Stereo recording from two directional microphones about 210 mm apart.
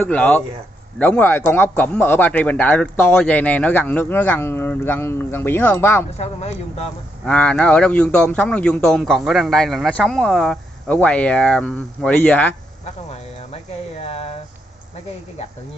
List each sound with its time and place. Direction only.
0.0 s speech: 5° left (ahead or behind)
6.1 s speech: 30° left (ahead or behind)
7.2 s a man's voice: 5° left (ahead or behind)
12.8 s vehicle: 30° left (ahead or behind)
14.0 s a sound: 30° left (ahead or behind)